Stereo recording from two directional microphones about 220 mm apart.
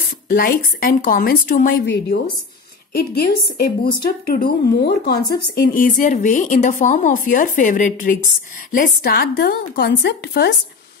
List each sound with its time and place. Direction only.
0.3 s a woman's voice: 40° left (ahead or behind)